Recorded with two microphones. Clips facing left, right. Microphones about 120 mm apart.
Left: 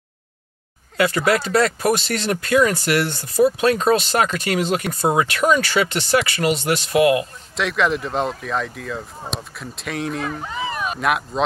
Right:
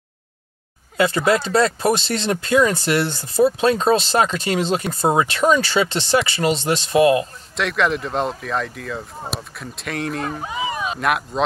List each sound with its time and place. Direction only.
0.9 s speech: 25° right (ahead or behind)
7.5 s speech: centre (ahead or behind)
10.4 s speech: 15° right (ahead or behind)
11.0 s speech: centre (ahead or behind)